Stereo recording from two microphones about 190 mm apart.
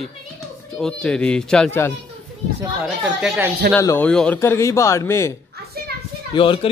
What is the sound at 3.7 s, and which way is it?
A man's voice, 10° left (ahead or behind).